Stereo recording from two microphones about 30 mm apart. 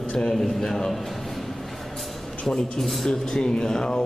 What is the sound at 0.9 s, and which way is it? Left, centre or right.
Music, centre.